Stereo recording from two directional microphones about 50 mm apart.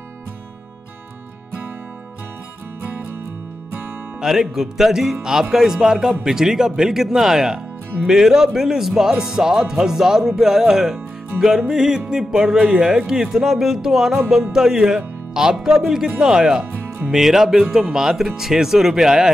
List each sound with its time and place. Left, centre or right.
4.2 s speech: centre